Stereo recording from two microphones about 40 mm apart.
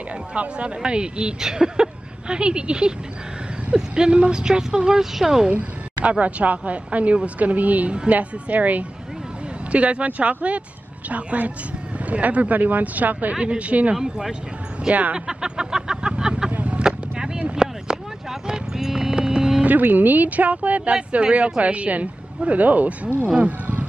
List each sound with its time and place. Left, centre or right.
0.3 s speech: right; by 5.5 s centre
5.5 s a woman's voice: right
13.4 s a woman's voice: right
13.9 s speech: centre
15.1 s a sound: centre
16.5 s vehicle: right
16.8 s a sound: centre
18.5 s music: centre
19.6 s a woman's voice: right